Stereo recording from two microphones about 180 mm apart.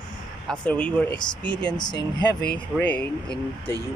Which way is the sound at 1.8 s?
25° left (ahead or behind).